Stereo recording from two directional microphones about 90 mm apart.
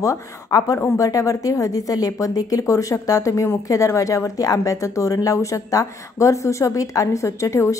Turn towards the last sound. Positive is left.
turn(degrees=35)  # may be behind; listen again after turning